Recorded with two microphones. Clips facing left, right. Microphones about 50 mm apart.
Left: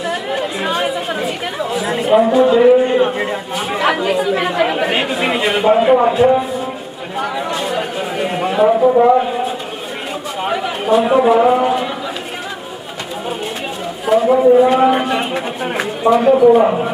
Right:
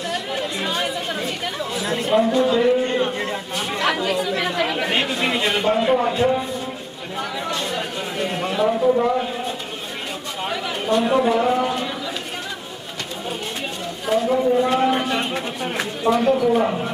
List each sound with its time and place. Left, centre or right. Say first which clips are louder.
0.3 s speech: left 6 dB; centre
7.2 s chatter: left 6 dB; centre
8.6 s speech: left 8 dB; left
10.4 s chatter: left 7 dB; centre
10.9 s a man's voice: left 6 dB; centre
14.0 s a sound: left 7 dB; centre
14.3 s a man's voice: left 9 dB; centre